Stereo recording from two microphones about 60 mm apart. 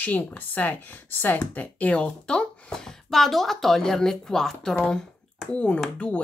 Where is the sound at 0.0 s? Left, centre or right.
Left; by 4.7 s centre.